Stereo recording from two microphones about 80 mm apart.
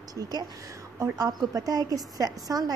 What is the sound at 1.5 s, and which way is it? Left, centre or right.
A woman's voice, right.